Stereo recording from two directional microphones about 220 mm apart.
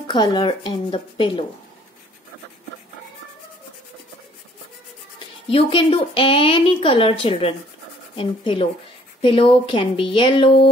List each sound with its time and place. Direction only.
0.0 s a woman's voice: 20° left (ahead or behind)
5.5 s a woman's voice: 25° left (ahead or behind)